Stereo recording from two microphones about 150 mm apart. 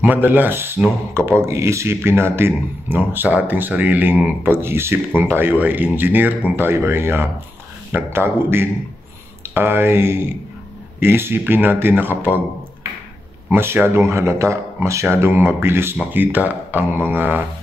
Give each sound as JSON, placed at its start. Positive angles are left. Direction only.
{"t": 0.0, "sound": "speech", "side_deg": -10}
{"t": 13.6, "sound": "speech", "side_deg": -15}